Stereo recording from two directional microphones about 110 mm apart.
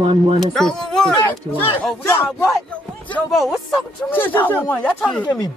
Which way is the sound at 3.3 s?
Centre (ahead or behind).